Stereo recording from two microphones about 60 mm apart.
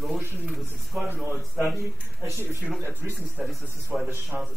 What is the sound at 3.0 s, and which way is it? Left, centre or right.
Speech, right.